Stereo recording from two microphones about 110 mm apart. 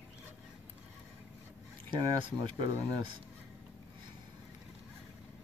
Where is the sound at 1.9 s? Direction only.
45° right (ahead or behind).